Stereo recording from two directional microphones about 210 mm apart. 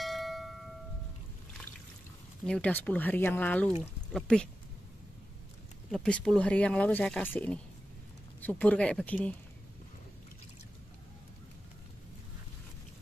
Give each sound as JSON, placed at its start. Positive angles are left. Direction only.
{"t": 0.0, "sound": "a sound", "side_deg": 0}
{"t": 2.4, "sound": "speech", "side_deg": 5}
{"t": 5.9, "sound": "speech", "side_deg": 5}